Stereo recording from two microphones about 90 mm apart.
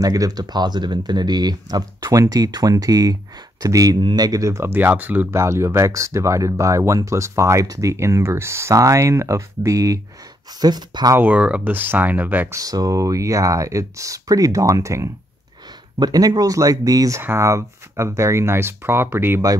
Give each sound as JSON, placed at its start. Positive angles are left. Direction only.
{"t": 0.0, "sound": "speech", "side_deg": -40}
{"t": 4.7, "sound": "speech", "side_deg": -20}
{"t": 5.3, "sound": "speech", "side_deg": -30}
{"t": 10.6, "sound": "speech", "side_deg": -50}
{"t": 11.1, "sound": "speech", "side_deg": -15}
{"t": 12.5, "sound": "speech", "side_deg": -40}
{"t": 16.0, "sound": "speech", "side_deg": -45}
{"t": 17.2, "sound": "speech", "side_deg": -30}